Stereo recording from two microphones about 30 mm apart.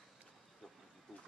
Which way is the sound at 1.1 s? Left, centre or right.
Centre.